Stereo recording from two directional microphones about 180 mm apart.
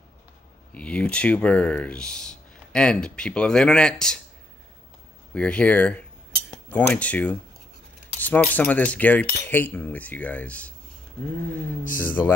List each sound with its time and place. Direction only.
0.7 s speech: 5° left (ahead or behind)
5.3 s cutlery: 5° left (ahead or behind)
6.5 s speech: 5° left (ahead or behind)
8.2 s cutlery: 10° left (ahead or behind)
11.8 s speech: 50° left (ahead or behind)